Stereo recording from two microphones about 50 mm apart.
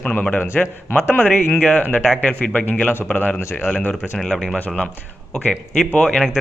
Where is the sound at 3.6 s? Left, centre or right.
Left.